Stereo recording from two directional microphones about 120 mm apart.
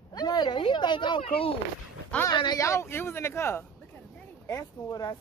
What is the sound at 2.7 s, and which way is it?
Speech, 20° left (ahead or behind).